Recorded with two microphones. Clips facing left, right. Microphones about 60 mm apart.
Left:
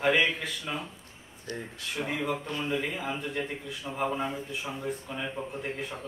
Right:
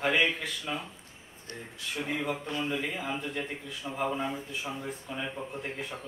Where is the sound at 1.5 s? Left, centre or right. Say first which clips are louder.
Left 6 dB; right.